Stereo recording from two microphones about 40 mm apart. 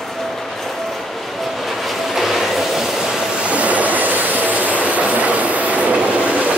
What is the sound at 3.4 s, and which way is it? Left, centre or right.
Train, right.